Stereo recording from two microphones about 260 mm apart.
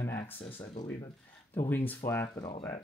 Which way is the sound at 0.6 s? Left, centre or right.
Centre.